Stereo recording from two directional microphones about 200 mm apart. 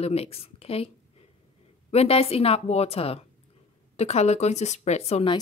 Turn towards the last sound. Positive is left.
turn(degrees=30)  # may be behind; listen again after turning